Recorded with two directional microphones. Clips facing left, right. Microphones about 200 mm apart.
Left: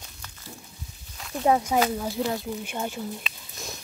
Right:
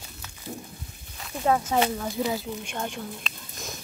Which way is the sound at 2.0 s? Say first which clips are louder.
Even; centre (ahead or behind).